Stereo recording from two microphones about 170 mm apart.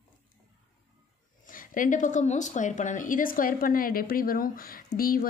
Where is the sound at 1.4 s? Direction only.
55° left (ahead or behind).